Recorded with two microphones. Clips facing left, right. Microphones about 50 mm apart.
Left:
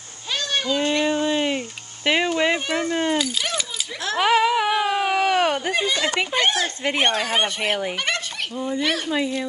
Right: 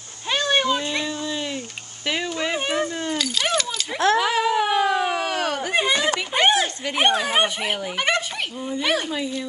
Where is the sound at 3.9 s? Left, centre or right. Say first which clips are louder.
Right 12 dB; right.